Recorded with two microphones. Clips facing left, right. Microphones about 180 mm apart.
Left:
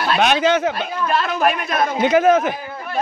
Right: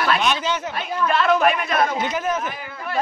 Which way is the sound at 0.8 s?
40° left (ahead or behind).